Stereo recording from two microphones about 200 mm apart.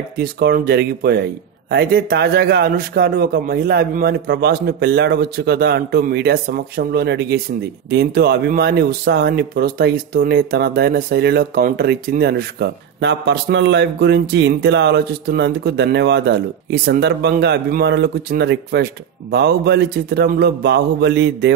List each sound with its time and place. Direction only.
0.2 s a man's voice: 50° right (ahead or behind)